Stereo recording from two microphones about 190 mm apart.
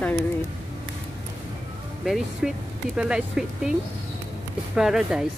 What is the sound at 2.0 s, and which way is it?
Speech, centre (ahead or behind).